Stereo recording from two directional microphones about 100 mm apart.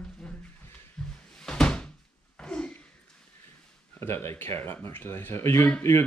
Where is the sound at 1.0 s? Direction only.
5° left (ahead or behind).